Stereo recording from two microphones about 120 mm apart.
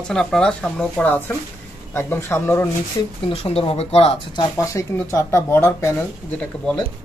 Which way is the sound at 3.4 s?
55° left (ahead or behind).